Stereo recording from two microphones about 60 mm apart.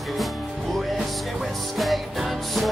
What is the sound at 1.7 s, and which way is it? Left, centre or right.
Music, centre.